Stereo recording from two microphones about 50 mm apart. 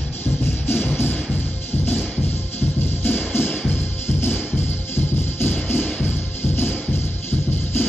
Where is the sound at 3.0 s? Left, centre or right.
Left.